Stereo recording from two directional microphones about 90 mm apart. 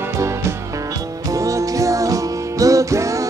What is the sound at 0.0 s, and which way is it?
Music, 35° right (ahead or behind).